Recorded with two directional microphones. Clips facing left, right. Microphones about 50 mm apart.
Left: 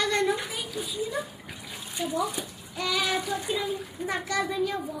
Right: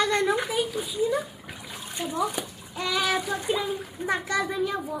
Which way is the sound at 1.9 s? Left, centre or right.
Right.